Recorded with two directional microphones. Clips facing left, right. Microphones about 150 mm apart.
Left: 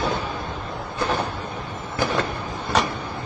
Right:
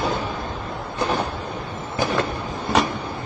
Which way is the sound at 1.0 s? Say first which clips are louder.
Right 1 dB; 15° right (ahead or behind).